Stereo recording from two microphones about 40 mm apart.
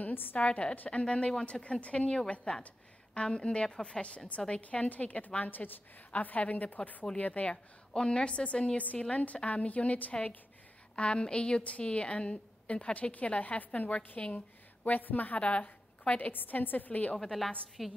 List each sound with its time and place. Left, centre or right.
0.0 s a sound: left
0.5 s a woman's voice: left
7.9 s a woman's voice: left
8.7 s a woman's voice: left
11.0 s a woman's voice: left
13.1 s a woman's voice: left
14.3 s speech: left
15.6 s a sound: left
16.3 s a woman's voice: left
17.2 s a woman's voice: centre